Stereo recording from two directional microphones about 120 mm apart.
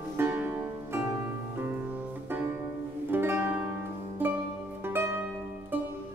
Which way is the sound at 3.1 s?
20° right (ahead or behind).